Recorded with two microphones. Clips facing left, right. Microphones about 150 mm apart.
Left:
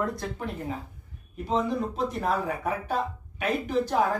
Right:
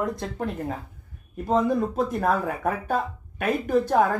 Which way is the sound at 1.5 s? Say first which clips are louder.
Right 5 dB; 50° right (ahead or behind).